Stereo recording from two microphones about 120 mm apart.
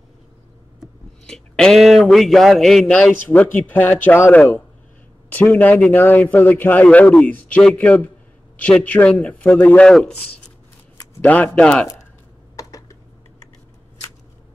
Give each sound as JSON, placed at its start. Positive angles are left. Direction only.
{"t": 1.2, "sound": "a man's voice", "side_deg": 5}
{"t": 11.1, "sound": "a man's voice", "side_deg": 15}
{"t": 12.5, "sound": "computer keyboard", "side_deg": 25}